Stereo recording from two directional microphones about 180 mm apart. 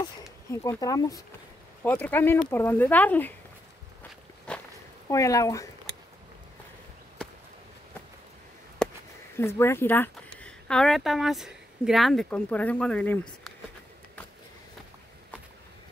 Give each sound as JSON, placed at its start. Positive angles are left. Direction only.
{"t": 0.5, "sound": "speech", "side_deg": 20}
{"t": 4.5, "sound": "walk", "side_deg": 5}
{"t": 5.1, "sound": "speech", "side_deg": 20}
{"t": 9.4, "sound": "speech", "side_deg": 15}